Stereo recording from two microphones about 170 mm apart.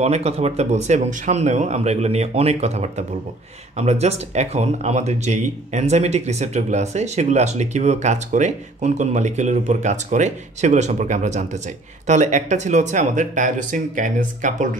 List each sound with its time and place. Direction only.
0.0 s speech: 40° right (ahead or behind)